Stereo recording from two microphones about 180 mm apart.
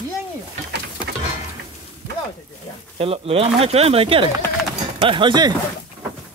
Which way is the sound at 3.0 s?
35° right (ahead or behind).